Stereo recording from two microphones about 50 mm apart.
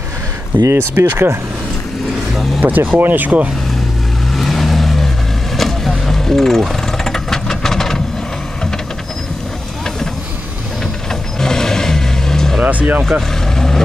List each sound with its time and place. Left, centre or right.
0.7 s speech: right
2.6 s speech: right
4.3 s vehicle: centre
11.1 s vehicle: centre
12.6 s speech: right
13.6 s vehicle: centre